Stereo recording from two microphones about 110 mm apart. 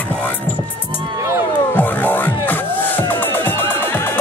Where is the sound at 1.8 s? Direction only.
15° left (ahead or behind).